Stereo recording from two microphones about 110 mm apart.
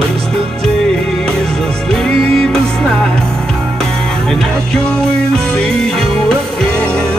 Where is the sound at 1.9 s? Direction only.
5° left (ahead or behind).